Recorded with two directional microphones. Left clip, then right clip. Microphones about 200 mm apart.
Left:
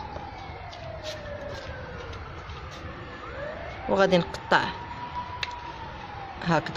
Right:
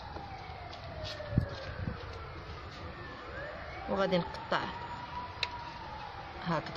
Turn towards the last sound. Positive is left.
turn(degrees=50)  # may be behind; listen again after turning